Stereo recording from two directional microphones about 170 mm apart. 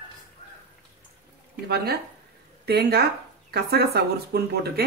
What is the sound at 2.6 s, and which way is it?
Speech, 70° right (ahead or behind).